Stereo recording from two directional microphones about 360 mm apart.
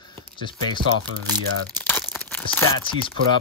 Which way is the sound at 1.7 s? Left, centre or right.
Centre.